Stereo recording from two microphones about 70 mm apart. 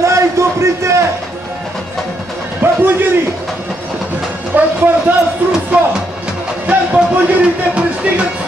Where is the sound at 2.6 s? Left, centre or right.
Right.